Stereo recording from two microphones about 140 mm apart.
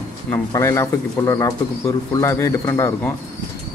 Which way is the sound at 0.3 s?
20° left (ahead or behind).